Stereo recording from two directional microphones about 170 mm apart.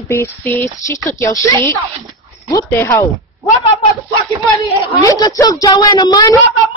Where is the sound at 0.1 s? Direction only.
15° left (ahead or behind).